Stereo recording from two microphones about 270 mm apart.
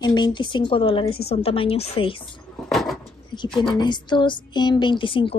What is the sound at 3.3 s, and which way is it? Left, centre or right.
A woman's voice, centre.